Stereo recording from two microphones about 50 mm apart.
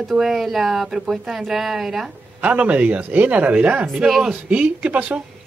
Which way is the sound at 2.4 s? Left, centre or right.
Right.